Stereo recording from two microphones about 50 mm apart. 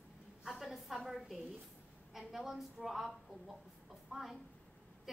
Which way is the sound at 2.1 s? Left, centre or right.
Centre.